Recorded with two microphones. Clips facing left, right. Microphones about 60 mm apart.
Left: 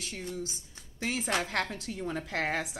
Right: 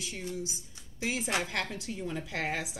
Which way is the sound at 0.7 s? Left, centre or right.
Left.